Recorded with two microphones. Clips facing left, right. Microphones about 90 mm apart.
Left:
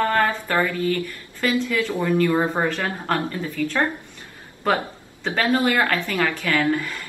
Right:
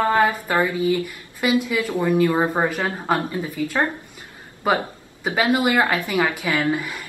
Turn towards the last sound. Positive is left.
turn(degrees=-15)  # may be behind; listen again after turning